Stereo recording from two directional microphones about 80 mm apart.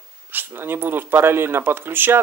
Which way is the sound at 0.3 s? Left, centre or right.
Right.